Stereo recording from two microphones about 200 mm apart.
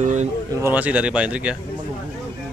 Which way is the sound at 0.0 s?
35° right (ahead or behind).